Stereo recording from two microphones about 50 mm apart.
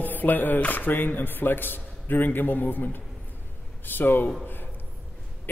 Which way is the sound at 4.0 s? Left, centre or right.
Left.